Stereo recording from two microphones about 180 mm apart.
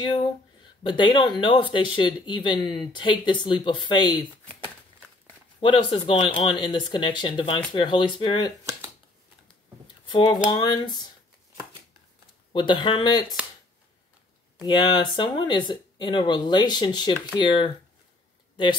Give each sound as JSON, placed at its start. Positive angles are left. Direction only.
{"t": 0.0, "sound": "a sound", "side_deg": 25}
{"t": 0.8, "sound": "speech", "side_deg": 25}
{"t": 5.6, "sound": "speech", "side_deg": 25}
{"t": 9.8, "sound": "a sound", "side_deg": 25}
{"t": 10.6, "sound": "speech", "side_deg": 25}
{"t": 12.5, "sound": "speech", "side_deg": 25}
{"t": 14.6, "sound": "speech", "side_deg": 25}